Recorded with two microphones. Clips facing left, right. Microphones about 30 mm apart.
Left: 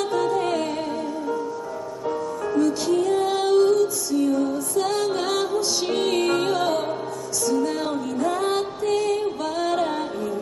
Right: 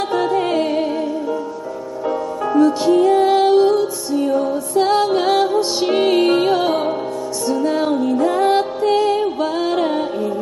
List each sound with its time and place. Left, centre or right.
0.1 s music: right
2.0 s music: right
8.8 s music: right